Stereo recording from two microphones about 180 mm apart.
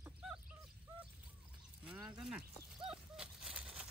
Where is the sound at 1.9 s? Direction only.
5° right (ahead or behind).